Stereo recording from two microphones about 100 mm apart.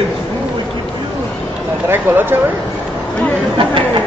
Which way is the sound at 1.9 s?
20° right (ahead or behind).